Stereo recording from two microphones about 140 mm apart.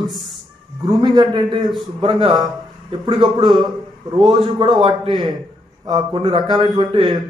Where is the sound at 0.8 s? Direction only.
30° right (ahead or behind).